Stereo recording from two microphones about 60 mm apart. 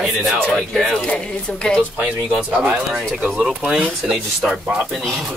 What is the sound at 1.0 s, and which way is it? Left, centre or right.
Speech, centre.